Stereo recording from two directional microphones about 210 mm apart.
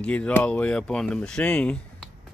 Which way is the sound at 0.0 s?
5° left (ahead or behind).